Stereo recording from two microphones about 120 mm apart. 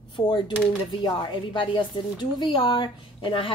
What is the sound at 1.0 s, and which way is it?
A woman's voice, 40° left (ahead or behind).